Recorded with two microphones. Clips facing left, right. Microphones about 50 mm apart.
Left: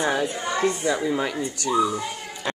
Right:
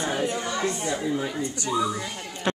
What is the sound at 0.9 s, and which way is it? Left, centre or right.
Speech, left.